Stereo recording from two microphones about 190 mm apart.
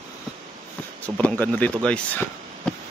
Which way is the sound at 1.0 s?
5° left (ahead or behind).